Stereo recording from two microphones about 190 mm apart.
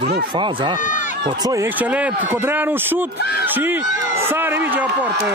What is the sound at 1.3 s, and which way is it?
Speech, 20° right (ahead or behind).